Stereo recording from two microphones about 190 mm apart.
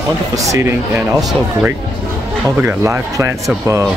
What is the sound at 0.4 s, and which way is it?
Speech, 15° right (ahead or behind).